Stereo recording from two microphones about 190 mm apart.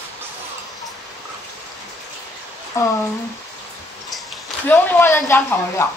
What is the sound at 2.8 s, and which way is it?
Speech, 15° left (ahead or behind).